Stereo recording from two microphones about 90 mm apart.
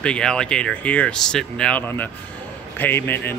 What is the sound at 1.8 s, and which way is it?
A man's voice, 20° left (ahead or behind).